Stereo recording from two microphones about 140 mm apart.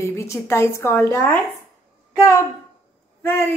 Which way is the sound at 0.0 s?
20° left (ahead or behind).